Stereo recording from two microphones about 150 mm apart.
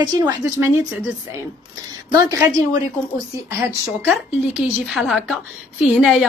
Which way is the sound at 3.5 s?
10° right (ahead or behind).